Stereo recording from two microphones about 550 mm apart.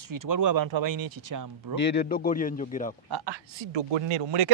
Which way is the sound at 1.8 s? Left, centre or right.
Centre.